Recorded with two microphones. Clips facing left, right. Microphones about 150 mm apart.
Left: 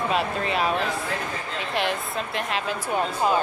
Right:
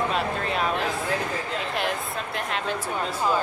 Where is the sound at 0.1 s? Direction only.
5° left (ahead or behind).